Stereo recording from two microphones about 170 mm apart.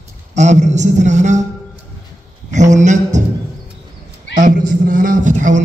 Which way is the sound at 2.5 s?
45° right (ahead or behind).